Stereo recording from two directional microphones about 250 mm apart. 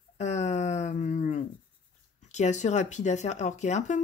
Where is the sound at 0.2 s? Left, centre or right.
Left.